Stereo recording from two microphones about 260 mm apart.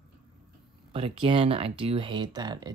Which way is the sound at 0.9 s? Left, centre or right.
Right.